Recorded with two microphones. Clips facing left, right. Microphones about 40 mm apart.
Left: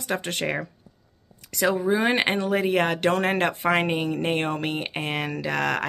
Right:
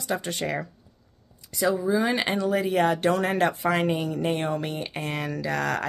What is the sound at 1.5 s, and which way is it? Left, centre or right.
Speech, left.